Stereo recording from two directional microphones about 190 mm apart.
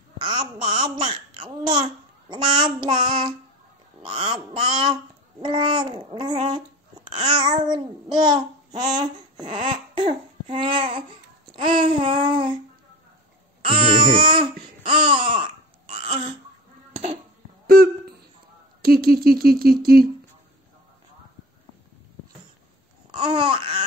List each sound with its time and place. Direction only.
0.2 s babbling: 20° right (ahead or behind)
4.0 s quack: 25° right (ahead or behind)
5.4 s babbling: 25° right (ahead or behind)
7.3 s child singing: 20° right (ahead or behind)
9.9 s babbling: 25° right (ahead or behind)
11.5 s child singing: 25° right (ahead or behind)
13.6 s babbling: 25° right (ahead or behind)
17.6 s a sound: 55° right (ahead or behind)
23.1 s babbling: 25° right (ahead or behind)